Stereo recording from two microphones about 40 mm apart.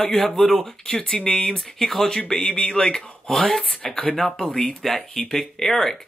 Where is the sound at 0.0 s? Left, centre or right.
Centre.